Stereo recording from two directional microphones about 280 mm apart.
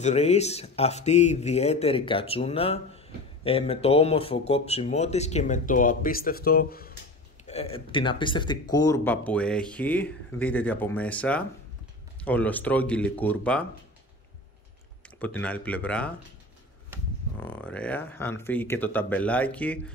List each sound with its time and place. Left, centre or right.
0.0 s speech: left
7.4 s speech: left; by 13.7 s centre
15.0 s speech: centre
17.4 s speech: centre